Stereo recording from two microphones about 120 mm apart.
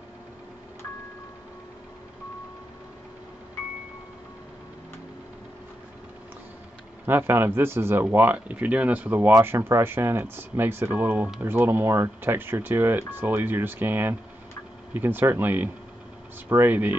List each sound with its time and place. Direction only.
7.1 s speech: 20° right (ahead or behind)